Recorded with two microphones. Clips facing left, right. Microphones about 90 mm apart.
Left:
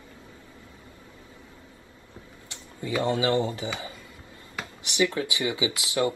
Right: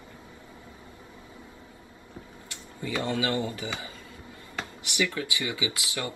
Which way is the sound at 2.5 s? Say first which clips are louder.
Left 3 dB; 20° left (ahead or behind).